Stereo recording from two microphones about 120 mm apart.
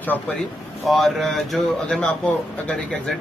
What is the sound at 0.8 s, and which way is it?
Speech, centre (ahead or behind).